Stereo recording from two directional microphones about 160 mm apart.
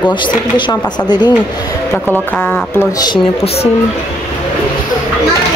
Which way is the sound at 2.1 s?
10° left (ahead or behind).